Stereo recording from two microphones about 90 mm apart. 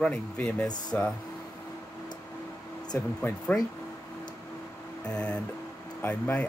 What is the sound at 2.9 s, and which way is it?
Speech, 25° left (ahead or behind).